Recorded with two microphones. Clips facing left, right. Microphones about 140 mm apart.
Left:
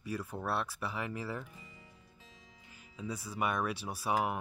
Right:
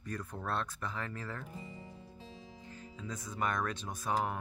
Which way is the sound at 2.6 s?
10° left (ahead or behind).